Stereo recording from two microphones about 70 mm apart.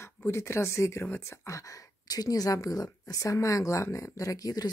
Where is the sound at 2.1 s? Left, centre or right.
Left.